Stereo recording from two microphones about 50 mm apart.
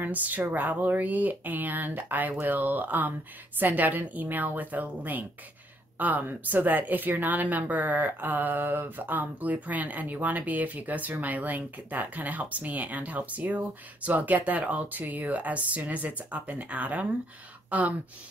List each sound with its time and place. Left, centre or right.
0.0 s speech: right